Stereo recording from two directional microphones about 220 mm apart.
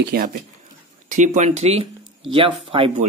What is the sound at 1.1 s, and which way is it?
Speech, 35° right (ahead or behind).